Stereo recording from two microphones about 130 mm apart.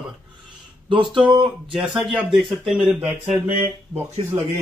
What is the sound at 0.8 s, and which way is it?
Speech, 40° right (ahead or behind).